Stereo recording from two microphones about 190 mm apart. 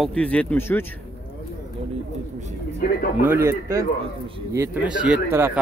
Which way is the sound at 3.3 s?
15° right (ahead or behind).